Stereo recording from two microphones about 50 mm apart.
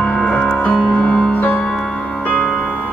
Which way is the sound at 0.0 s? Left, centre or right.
Left.